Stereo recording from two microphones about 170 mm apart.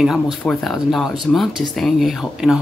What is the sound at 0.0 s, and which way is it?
Speech, centre (ahead or behind).